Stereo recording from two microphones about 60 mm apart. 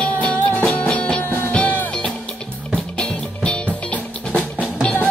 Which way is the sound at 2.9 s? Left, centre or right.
Centre.